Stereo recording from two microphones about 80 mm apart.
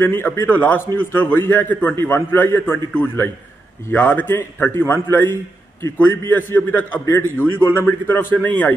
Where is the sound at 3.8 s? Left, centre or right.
Left.